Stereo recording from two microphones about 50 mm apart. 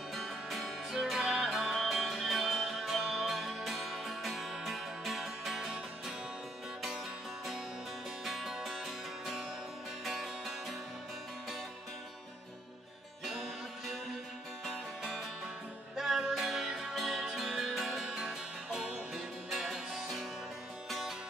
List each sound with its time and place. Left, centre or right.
0.1 s music: centre
8.3 s music: centre
10.0 s music: centre
13.2 s music: centre